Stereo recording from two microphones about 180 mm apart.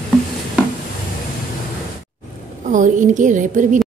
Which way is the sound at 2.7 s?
45° right (ahead or behind).